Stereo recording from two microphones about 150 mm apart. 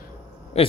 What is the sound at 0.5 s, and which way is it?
Speech, 45° left (ahead or behind).